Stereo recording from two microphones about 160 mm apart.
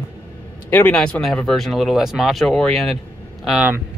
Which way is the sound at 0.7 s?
10° left (ahead or behind).